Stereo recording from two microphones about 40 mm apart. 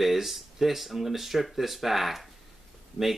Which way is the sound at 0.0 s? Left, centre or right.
Centre.